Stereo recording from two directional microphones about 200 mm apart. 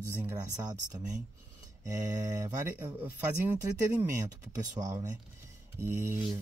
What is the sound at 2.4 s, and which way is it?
Speech, 10° right (ahead or behind).